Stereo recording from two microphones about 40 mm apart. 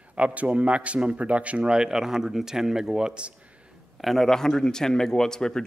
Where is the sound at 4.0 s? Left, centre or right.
Centre.